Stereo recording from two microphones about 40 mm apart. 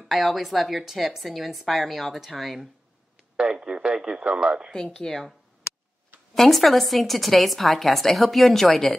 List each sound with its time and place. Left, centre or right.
0.1 s a woman's voice: centre
3.3 s speech: right
4.9 s speech: centre
6.3 s a woman's voice: centre